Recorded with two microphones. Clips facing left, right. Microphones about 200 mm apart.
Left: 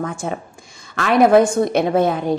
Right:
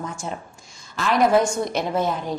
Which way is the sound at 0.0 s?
60° left (ahead or behind).